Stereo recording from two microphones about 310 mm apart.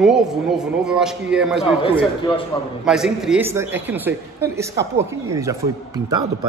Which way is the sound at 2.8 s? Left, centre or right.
Centre.